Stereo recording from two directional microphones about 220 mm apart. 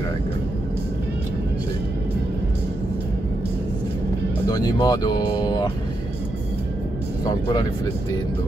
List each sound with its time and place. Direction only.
4.5 s speech: 15° left (ahead or behind)